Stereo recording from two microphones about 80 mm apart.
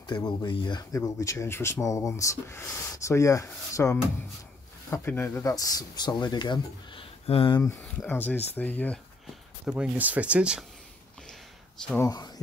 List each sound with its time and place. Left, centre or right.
0.5 s speech: left
0.9 s speech: left
5.4 s speech: left
8.1 s speech: left
9.7 s speech: centre
12.0 s speech: left